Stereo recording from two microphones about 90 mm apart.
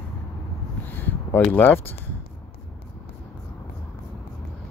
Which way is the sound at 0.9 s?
20° left (ahead or behind).